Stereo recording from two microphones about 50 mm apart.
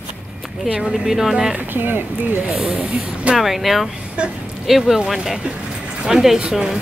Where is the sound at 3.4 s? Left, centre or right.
Centre.